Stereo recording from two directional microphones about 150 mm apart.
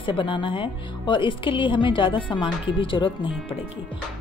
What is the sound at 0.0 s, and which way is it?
Speech, 35° left (ahead or behind).